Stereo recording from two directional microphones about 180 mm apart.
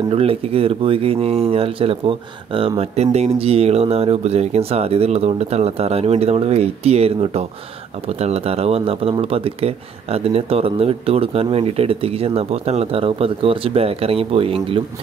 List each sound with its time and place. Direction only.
0.1 s speech: 35° right (ahead or behind)